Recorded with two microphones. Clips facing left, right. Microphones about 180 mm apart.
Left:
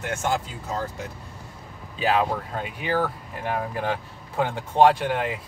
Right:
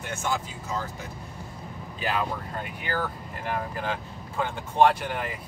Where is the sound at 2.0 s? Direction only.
90° left.